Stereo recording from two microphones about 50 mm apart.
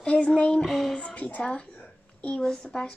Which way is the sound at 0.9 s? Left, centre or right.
Left.